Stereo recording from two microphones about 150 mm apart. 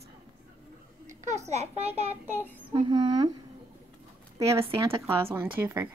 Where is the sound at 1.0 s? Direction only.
50° right (ahead or behind).